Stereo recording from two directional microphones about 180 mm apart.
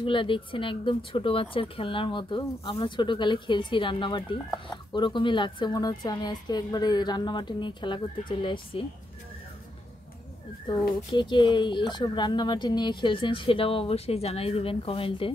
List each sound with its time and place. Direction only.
0.0 s speech: 30° left (ahead or behind)
10.7 s speech: 25° left (ahead or behind)